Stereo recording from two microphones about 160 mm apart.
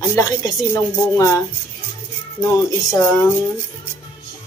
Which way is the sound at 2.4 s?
20° left (ahead or behind).